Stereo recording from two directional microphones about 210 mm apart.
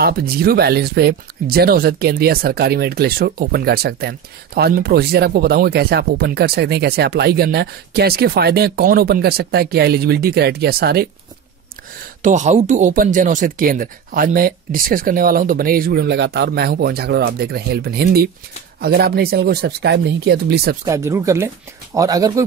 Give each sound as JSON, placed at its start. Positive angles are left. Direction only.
{"t": 0.0, "sound": "speech", "side_deg": -45}
{"t": 12.2, "sound": "speech", "side_deg": -35}
{"t": 20.8, "sound": "speech", "side_deg": -15}